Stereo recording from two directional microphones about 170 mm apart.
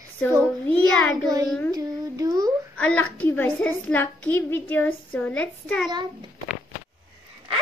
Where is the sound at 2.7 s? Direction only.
10° left (ahead or behind).